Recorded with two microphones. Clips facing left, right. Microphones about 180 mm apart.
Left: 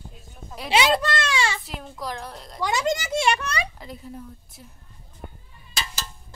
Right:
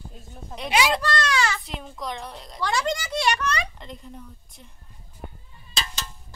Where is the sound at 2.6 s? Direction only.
20° left (ahead or behind).